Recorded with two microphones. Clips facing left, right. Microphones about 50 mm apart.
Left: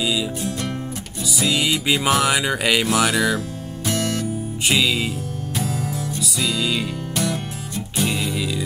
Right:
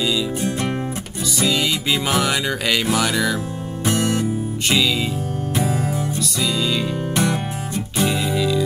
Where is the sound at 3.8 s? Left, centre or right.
Right.